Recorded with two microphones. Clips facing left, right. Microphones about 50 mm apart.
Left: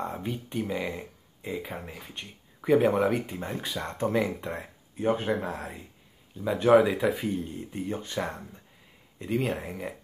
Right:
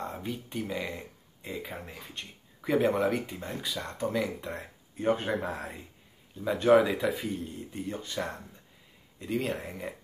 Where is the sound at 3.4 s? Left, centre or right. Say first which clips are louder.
Left 3 dB; left.